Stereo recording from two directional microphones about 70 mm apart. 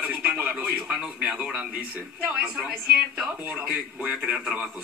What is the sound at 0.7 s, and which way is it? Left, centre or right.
A man's voice, centre.